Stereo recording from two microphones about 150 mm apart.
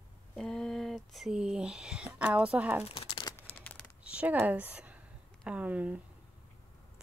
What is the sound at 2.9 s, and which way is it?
Crumpling, 30° left (ahead or behind).